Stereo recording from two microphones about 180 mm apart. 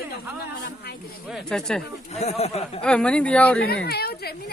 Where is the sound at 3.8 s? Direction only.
60° left (ahead or behind).